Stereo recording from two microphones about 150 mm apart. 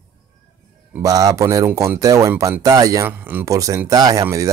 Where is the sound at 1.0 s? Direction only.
25° right (ahead or behind).